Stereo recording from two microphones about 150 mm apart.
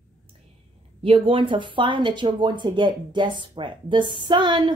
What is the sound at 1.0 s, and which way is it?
A woman's voice, 40° right (ahead or behind).